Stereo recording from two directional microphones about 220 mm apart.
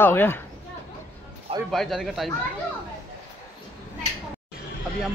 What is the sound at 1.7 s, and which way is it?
Speech, centre (ahead or behind).